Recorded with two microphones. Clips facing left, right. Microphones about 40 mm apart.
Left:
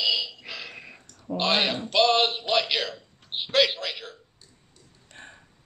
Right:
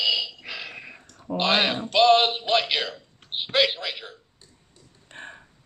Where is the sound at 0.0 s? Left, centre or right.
Centre.